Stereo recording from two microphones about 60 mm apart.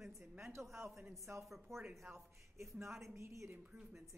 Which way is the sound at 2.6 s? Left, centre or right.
Right.